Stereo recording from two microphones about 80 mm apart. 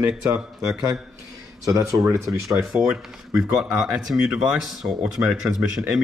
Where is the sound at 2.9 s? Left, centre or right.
Centre.